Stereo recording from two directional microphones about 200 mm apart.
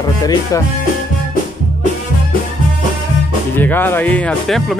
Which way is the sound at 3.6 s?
10° left (ahead or behind).